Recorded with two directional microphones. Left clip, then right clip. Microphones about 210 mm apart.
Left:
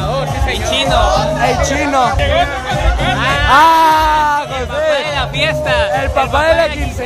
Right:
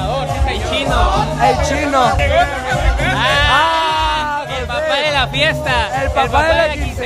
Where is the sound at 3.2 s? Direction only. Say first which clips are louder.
Even; 55° right (ahead or behind).